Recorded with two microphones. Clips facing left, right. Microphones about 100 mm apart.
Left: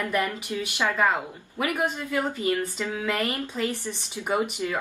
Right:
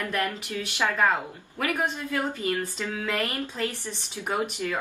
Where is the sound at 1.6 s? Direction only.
15° left (ahead or behind).